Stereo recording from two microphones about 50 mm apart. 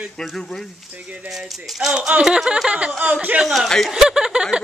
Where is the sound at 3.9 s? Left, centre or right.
Centre.